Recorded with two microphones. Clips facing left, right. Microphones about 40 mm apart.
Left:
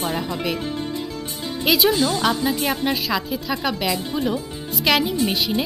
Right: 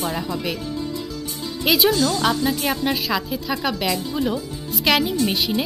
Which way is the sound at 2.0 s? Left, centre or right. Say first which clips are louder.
Even; centre.